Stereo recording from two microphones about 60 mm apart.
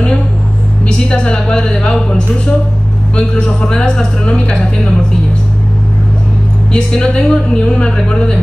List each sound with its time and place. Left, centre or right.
0.8 s a woman's voice: centre
6.7 s speech: centre